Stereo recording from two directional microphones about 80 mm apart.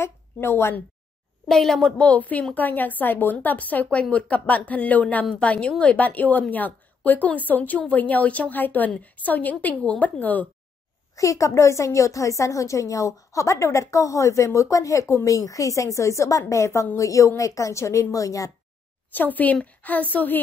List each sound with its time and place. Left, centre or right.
0.0 s a woman's voice: left
1.5 s a woman's voice: centre
11.1 s a woman's voice: left
19.1 s speech: left